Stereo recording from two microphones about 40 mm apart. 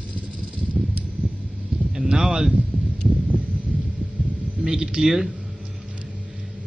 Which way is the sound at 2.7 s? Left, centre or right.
Right.